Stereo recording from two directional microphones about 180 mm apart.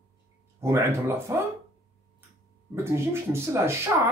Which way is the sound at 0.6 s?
15° right (ahead or behind).